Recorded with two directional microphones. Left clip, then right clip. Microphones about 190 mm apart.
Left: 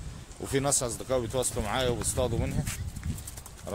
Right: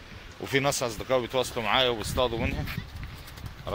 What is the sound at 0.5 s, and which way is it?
Speech, 30° left (ahead or behind).